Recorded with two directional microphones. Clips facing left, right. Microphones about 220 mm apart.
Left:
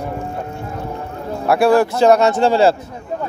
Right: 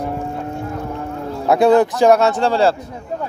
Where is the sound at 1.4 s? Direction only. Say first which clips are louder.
Right 1 dB; 20° right (ahead or behind).